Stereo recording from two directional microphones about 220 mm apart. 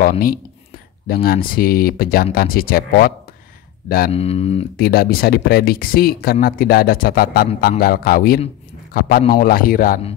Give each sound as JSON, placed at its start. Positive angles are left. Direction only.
{"t": 0.0, "sound": "speech", "side_deg": 40}
{"t": 4.1, "sound": "speech", "side_deg": 25}
{"t": 4.7, "sound": "speech", "side_deg": 45}